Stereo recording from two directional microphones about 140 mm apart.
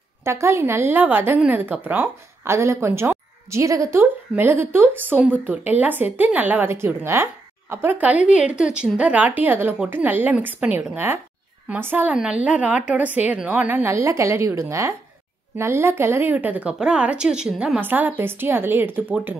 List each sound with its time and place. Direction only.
0.2 s a woman's voice: 20° right (ahead or behind)